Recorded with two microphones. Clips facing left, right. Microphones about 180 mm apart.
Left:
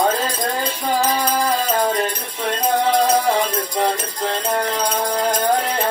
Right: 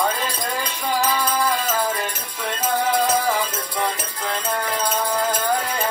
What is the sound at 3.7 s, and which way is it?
Music, 35° left (ahead or behind).